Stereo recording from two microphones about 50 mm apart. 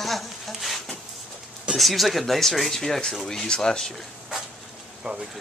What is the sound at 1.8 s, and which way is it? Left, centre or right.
Speech, centre.